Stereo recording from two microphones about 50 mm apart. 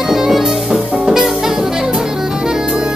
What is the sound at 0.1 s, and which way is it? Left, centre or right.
Music, centre.